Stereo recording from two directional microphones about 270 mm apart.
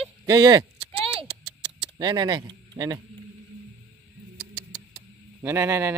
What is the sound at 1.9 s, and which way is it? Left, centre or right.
Speech, centre.